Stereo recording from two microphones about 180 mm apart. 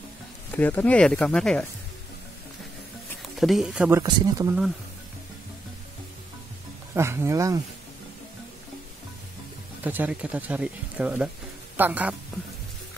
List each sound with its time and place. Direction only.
0.5 s speech: 10° left (ahead or behind)
3.3 s speech: centre (ahead or behind)
4.0 s speech: 20° right (ahead or behind)
6.9 s speech: 15° right (ahead or behind)
9.8 s speech: 10° right (ahead or behind)